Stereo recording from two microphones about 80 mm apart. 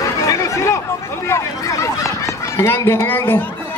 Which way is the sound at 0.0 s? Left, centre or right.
Left.